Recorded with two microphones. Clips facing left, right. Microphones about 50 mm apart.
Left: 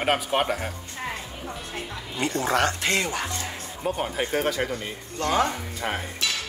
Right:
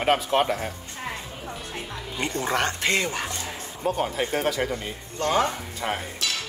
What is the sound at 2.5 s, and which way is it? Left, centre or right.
Speech, right.